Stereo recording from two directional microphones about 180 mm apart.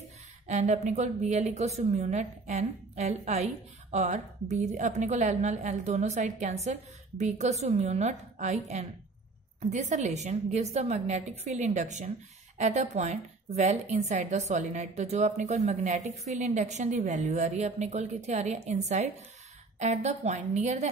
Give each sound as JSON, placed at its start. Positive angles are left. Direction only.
{"t": 0.5, "sound": "a woman's voice", "side_deg": -40}